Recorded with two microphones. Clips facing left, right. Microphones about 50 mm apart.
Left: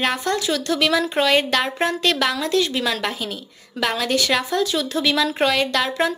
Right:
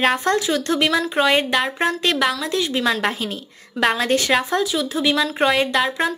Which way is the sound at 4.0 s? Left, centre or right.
Right.